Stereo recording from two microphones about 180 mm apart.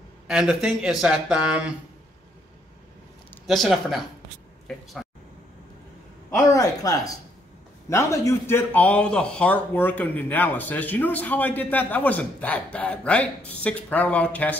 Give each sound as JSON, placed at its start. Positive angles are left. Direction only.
{"t": 0.3, "sound": "speech", "side_deg": -5}
{"t": 3.4, "sound": "speech", "side_deg": 0}
{"t": 6.5, "sound": "speech", "side_deg": 20}